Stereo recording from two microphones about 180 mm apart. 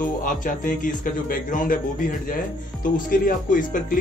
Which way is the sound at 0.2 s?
50° left (ahead or behind).